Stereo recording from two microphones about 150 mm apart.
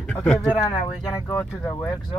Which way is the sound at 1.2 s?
15° left (ahead or behind).